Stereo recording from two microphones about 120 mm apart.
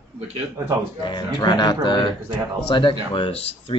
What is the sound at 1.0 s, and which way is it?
Speech, 40° left (ahead or behind).